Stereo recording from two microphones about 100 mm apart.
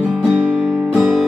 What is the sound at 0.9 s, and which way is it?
Music, 5° right (ahead or behind).